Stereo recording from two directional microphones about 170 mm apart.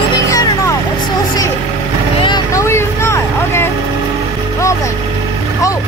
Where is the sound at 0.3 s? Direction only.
20° left (ahead or behind).